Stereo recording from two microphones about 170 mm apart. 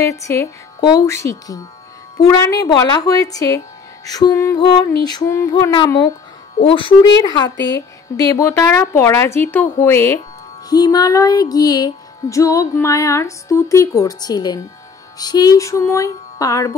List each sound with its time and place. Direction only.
0.0 s a woman's voice: 15° left (ahead or behind)
2.1 s music: 20° left (ahead or behind)
6.6 s speech: 30° left (ahead or behind)
7.2 s music: 25° left (ahead or behind)
7.6 s a woman's voice: 20° left (ahead or behind)
10.7 s music: 20° left (ahead or behind)